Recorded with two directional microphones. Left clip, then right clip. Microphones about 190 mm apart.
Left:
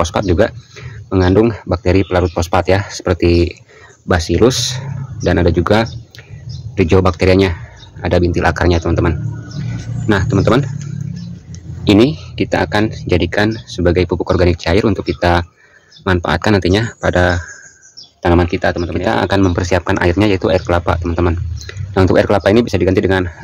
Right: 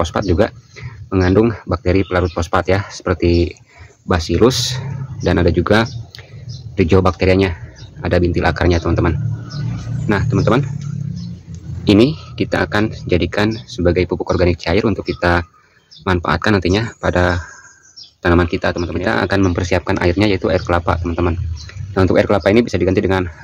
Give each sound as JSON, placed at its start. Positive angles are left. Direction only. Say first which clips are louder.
{"t": 0.0, "sound": "speech", "louder": "left 2 dB", "side_deg": 5}
{"t": 10.0, "sound": "speech", "louder": "left 3 dB", "side_deg": 20}
{"t": 11.8, "sound": "speech", "louder": "left 2 dB", "side_deg": 5}